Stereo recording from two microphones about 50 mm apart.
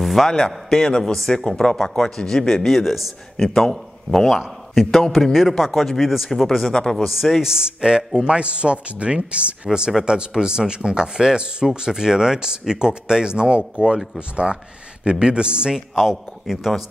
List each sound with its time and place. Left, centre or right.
0.0 s a sound: centre
0.7 s a man's voice: centre
4.3 s a man's voice: centre
7.4 s speech: centre
15.9 s a man's voice: centre